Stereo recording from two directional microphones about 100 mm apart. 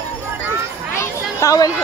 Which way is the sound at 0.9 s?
35° left (ahead or behind).